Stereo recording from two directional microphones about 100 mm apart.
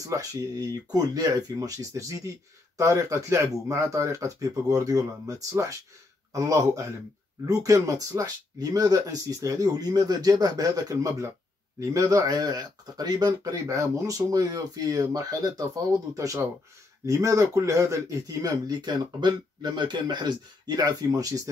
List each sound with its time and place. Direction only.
0.0 s speech: 35° right (ahead or behind)